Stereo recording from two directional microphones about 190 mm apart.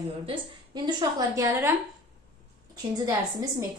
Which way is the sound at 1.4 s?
15° right (ahead or behind).